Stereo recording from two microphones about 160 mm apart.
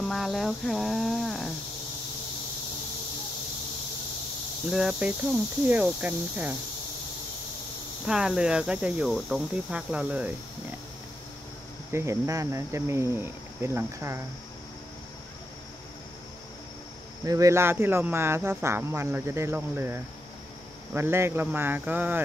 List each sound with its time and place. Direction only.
0.0 s speech: centre (ahead or behind)
4.6 s speech: centre (ahead or behind)
8.1 s speech: 5° right (ahead or behind)
11.9 s speech: 15° right (ahead or behind)
17.2 s speech: 20° right (ahead or behind)